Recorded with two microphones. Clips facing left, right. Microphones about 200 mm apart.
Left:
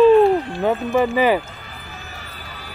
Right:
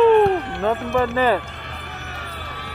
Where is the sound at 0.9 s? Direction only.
15° left (ahead or behind).